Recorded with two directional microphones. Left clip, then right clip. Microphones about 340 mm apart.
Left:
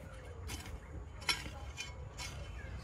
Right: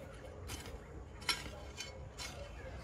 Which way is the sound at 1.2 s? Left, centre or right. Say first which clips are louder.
Left 2 dB; centre.